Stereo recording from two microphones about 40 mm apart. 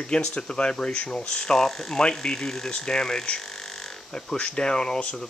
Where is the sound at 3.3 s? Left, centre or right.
Centre.